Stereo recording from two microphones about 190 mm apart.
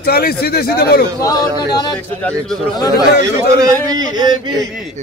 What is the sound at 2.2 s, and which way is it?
Speech, 5° left (ahead or behind).